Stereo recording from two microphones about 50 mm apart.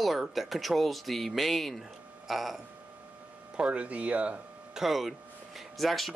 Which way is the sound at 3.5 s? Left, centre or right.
Right.